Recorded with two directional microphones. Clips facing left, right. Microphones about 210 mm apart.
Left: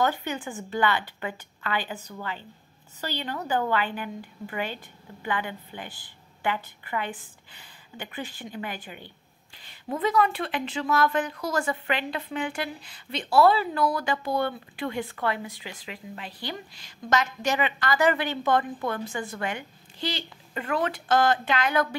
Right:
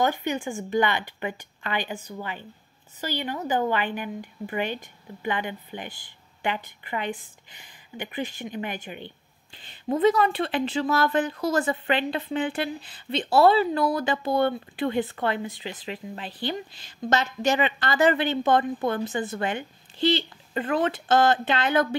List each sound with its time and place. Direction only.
0.0 s a woman's voice: 15° right (ahead or behind)